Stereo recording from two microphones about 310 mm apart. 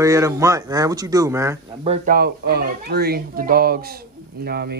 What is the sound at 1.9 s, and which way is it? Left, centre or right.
Speech, right.